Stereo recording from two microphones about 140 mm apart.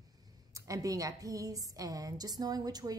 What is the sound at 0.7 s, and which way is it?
A woman's voice, 25° right (ahead or behind).